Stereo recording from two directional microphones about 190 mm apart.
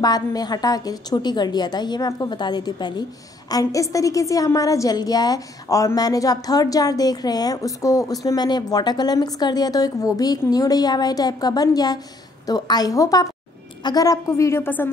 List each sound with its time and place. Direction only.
0.0 s a woman's voice: 20° left (ahead or behind)